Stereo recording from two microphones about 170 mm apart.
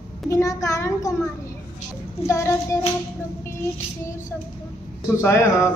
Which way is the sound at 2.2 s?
15° left (ahead or behind).